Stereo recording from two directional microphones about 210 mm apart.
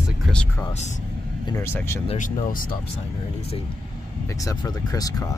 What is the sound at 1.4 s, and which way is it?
Speech, 15° left (ahead or behind).